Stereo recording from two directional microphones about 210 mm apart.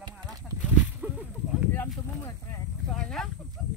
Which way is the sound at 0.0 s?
15° right (ahead or behind).